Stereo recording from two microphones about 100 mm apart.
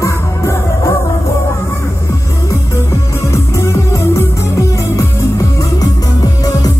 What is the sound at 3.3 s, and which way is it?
Music, 30° left (ahead or behind).